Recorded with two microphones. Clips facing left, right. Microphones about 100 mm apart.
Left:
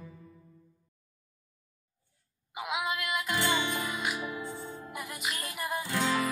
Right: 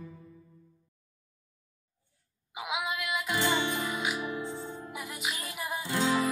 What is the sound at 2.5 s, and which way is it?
Music, centre (ahead or behind).